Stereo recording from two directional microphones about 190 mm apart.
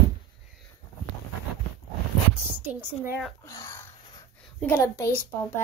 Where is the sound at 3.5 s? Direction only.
15° left (ahead or behind).